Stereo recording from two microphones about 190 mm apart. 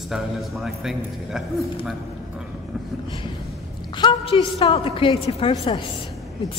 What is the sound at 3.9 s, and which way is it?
A woman's voice, 25° left (ahead or behind).